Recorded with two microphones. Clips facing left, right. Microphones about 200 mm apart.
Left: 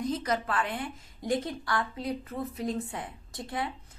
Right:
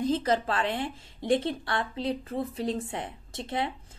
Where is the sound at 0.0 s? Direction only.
30° right (ahead or behind).